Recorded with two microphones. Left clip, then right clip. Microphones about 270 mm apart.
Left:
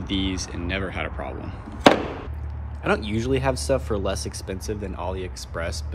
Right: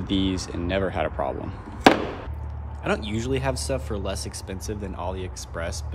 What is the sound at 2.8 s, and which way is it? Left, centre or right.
Speech, centre.